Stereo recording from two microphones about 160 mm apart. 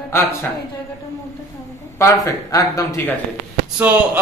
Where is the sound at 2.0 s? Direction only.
20° left (ahead or behind).